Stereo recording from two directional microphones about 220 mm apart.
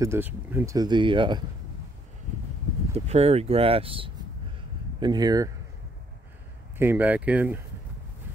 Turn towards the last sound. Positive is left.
turn(degrees=-5)  # may be behind; listen again after turning